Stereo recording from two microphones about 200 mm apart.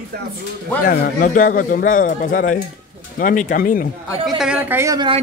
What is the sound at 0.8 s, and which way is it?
A man's voice, 40° left (ahead or behind).